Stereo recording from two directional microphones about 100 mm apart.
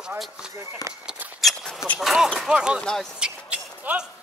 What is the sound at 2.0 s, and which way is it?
Speech, 5° right (ahead or behind).